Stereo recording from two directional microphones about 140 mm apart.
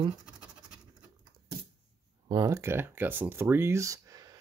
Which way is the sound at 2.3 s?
25° right (ahead or behind).